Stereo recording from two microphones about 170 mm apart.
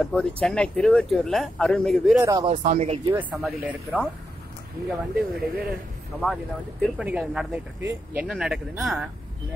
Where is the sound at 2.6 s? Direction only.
40° right (ahead or behind).